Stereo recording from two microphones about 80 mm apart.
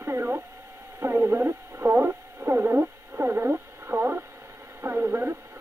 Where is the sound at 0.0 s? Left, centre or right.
Right.